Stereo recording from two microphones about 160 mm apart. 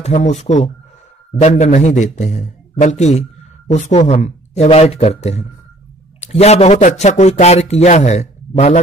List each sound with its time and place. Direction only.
0.0 s speech: 45° left (ahead or behind)